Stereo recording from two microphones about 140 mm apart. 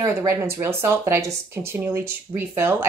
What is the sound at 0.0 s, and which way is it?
Speech, 20° right (ahead or behind).